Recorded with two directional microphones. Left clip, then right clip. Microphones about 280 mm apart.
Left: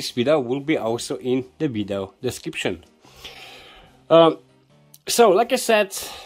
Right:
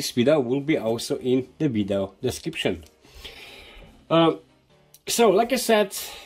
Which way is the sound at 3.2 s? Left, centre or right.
Centre.